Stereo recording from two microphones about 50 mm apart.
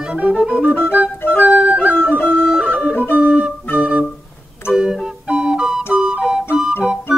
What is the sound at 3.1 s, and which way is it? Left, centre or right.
Music, right.